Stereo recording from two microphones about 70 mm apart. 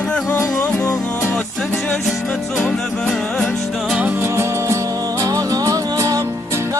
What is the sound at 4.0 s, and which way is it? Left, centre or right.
Music, right.